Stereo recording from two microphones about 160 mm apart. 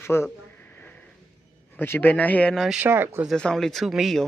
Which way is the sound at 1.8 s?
10° left (ahead or behind).